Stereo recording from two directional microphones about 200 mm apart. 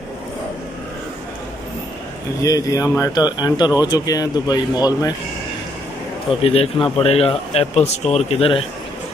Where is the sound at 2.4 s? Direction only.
15° left (ahead or behind).